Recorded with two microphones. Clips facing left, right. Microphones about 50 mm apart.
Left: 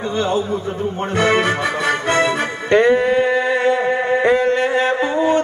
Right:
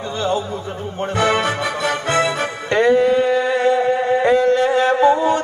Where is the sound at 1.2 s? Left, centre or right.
Left.